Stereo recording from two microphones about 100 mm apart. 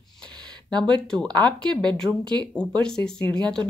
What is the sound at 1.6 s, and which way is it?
Speech, 10° left (ahead or behind).